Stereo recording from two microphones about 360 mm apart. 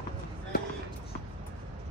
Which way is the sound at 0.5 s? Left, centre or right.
Left.